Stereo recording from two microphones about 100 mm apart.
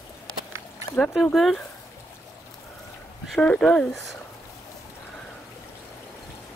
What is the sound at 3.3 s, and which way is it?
Speech, 10° left (ahead or behind).